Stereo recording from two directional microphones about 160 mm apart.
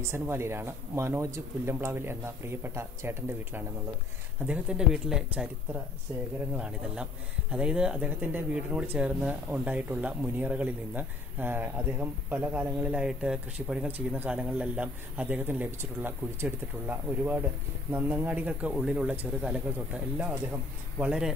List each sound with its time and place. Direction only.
0.0 s speech: 15° right (ahead or behind)
4.5 s speech: 5° right (ahead or behind)
6.5 s speech: 5° right (ahead or behind)
21.0 s speech: 5° right (ahead or behind)